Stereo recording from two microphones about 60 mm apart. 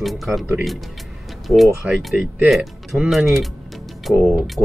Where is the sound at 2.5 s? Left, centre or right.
Centre.